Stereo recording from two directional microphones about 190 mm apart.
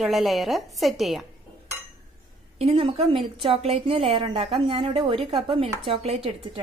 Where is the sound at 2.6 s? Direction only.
30° right (ahead or behind).